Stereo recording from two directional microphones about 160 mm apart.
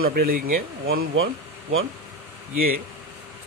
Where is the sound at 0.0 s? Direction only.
65° right (ahead or behind).